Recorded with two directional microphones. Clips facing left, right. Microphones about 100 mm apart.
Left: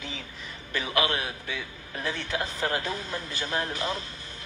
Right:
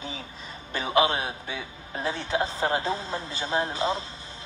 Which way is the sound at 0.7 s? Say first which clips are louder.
Right 4 dB; 30° right (ahead or behind).